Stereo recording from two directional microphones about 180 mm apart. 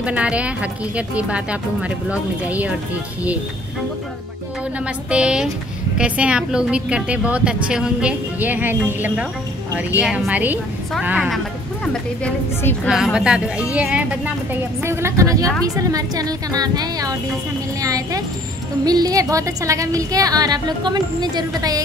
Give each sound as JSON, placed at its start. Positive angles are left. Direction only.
{"t": 0.0, "sound": "a woman's voice", "side_deg": -5}
{"t": 4.7, "sound": "a woman's voice", "side_deg": -5}